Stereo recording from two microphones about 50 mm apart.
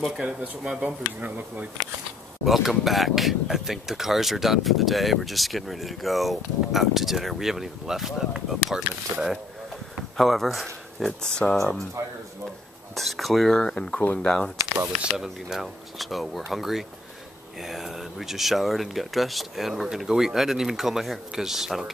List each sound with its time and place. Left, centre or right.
0.8 s speech: right
2.4 s speech: centre
9.1 s speech: right
10.1 s speech: centre
11.5 s speech: centre
12.9 s speech: centre
13.6 s speech: centre
15.1 s speech: centre